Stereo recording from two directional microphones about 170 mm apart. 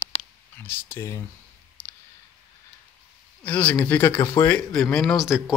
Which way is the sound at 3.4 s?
10° left (ahead or behind).